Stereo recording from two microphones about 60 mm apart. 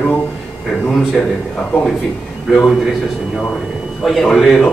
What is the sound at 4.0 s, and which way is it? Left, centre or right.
Speech, centre.